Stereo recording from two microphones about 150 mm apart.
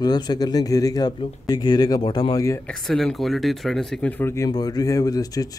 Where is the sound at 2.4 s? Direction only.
20° left (ahead or behind).